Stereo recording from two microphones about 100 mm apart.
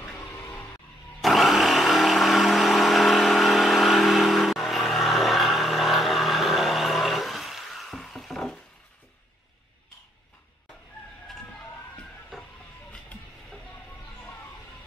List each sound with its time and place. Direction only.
0.1 s vehicle: 20° left (ahead or behind)
1.2 s vehicle: centre (ahead or behind)
12.0 s a sound: 5° left (ahead or behind)
12.9 s train: 5° left (ahead or behind)